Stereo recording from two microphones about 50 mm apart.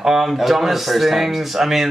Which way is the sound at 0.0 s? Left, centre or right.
Centre.